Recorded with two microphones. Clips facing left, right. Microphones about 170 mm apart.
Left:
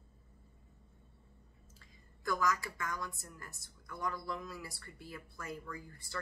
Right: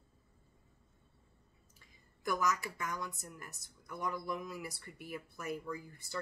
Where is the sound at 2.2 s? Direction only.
20° right (ahead or behind).